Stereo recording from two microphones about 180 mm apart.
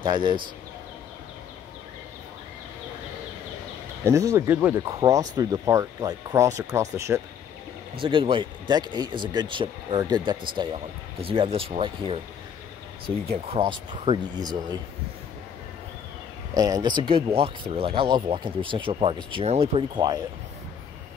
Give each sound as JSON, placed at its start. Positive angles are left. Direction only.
{"t": 0.0, "sound": "speech", "side_deg": -25}
{"t": 4.0, "sound": "speech", "side_deg": -15}
{"t": 8.0, "sound": "speech", "side_deg": -30}
{"t": 13.3, "sound": "speech", "side_deg": -30}
{"t": 16.5, "sound": "speech", "side_deg": -20}